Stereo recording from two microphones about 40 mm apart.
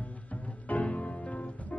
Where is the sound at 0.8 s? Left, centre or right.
Left.